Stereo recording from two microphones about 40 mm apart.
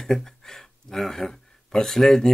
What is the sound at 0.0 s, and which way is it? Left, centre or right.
Speech, centre.